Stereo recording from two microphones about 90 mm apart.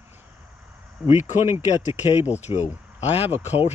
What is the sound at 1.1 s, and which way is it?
Speech, 30° right (ahead or behind).